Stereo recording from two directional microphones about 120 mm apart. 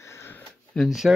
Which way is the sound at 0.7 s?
5° left (ahead or behind).